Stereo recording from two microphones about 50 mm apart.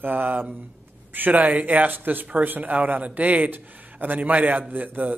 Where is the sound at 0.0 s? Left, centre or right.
Right.